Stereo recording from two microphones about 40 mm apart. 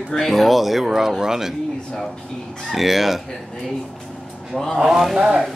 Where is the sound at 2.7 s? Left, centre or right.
Centre.